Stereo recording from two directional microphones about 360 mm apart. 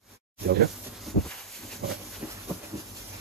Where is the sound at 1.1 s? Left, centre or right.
Centre.